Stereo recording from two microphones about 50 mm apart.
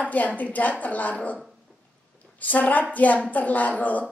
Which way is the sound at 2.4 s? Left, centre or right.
Left.